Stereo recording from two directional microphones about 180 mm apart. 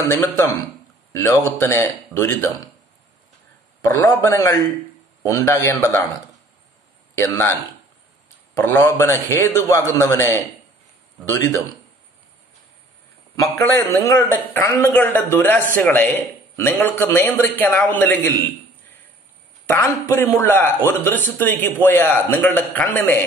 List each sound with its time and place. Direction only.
0.0 s a man's voice: 15° left (ahead or behind)
1.4 s a man's voice: 15° left (ahead or behind)
3.8 s a man's voice: 15° left (ahead or behind)
8.5 s a man's voice: 15° left (ahead or behind)
13.4 s a man's voice: 15° left (ahead or behind)
19.6 s a man's voice: 15° left (ahead or behind)